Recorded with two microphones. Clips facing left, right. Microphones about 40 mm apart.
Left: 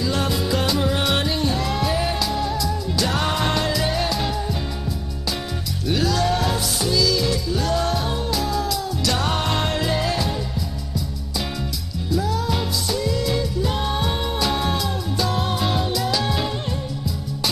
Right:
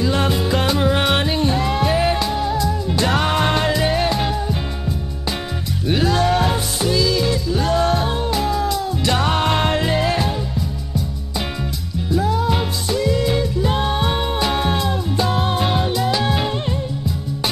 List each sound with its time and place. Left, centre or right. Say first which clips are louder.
0.0 s music: right 4 dB; right
5.9 s music: right 3 dB; right
12.1 s music: right 4 dB; right